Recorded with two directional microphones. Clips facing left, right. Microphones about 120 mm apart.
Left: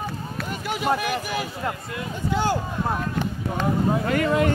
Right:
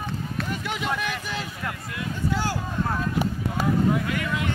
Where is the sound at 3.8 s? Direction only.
40° left (ahead or behind).